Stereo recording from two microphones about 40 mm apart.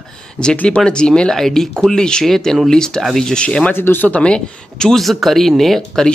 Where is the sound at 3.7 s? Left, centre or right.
Left.